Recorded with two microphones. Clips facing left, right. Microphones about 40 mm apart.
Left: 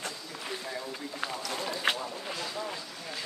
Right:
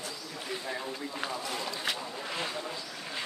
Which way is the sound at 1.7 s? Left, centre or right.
Left.